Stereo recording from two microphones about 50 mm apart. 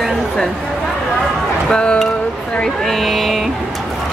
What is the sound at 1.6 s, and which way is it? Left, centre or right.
Speech, centre.